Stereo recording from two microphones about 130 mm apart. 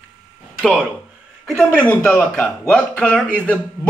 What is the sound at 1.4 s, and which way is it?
Speech, 5° left (ahead or behind).